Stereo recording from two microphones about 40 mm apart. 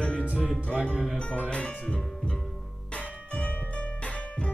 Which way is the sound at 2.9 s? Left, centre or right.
Left.